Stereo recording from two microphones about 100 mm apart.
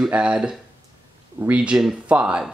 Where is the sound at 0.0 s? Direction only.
10° right (ahead or behind).